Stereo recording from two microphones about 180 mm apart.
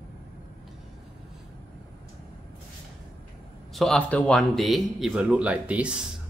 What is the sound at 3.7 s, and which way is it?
Speech, centre (ahead or behind).